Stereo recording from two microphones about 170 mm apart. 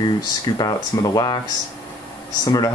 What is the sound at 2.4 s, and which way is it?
Speech, 20° left (ahead or behind).